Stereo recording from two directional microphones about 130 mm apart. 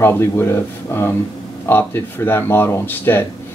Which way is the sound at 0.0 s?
20° left (ahead or behind).